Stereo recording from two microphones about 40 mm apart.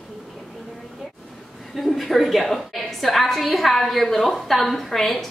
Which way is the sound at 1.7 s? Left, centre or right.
Centre.